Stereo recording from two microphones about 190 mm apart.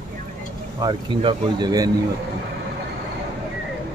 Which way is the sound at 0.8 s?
25° right (ahead or behind).